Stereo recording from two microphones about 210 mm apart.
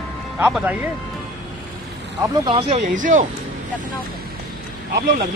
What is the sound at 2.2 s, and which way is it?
Speech, 20° right (ahead or behind).